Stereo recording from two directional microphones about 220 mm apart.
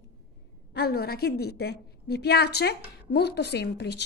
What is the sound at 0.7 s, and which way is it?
A woman's voice, 45° left (ahead or behind).